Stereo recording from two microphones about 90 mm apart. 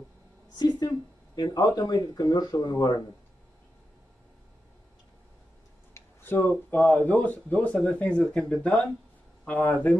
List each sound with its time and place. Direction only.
0.6 s speech: 45° left (ahead or behind)
5.9 s speech: 25° left (ahead or behind)